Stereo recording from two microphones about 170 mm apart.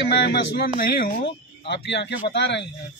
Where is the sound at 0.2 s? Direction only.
75° left (ahead or behind).